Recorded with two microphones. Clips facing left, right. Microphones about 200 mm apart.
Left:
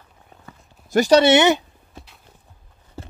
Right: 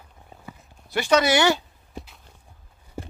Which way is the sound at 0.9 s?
40° left (ahead or behind).